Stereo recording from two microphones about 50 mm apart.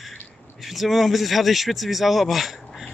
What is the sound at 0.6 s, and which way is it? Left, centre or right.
Speech, centre.